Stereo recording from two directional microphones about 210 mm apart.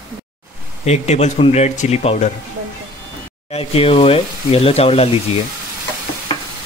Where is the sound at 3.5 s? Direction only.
25° left (ahead or behind).